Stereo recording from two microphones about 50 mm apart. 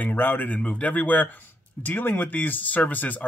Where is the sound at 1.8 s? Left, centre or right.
Left.